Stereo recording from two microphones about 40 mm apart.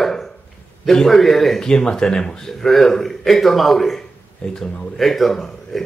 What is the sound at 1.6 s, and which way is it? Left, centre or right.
Speech, centre.